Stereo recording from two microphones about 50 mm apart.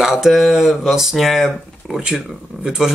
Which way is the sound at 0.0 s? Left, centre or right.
Centre.